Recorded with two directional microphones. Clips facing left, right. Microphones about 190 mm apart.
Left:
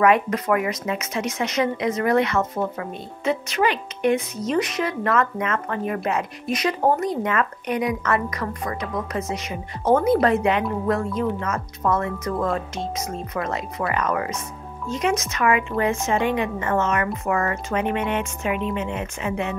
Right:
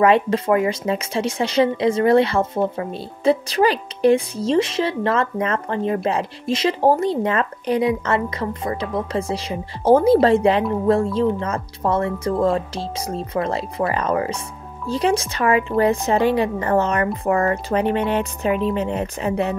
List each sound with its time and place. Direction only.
0.0 s a woman's voice: 30° right (ahead or behind)